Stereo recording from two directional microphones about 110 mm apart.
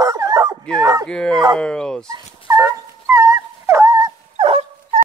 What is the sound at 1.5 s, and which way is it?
Speech, 10° left (ahead or behind).